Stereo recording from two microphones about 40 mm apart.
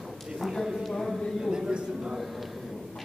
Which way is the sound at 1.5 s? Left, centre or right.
Centre.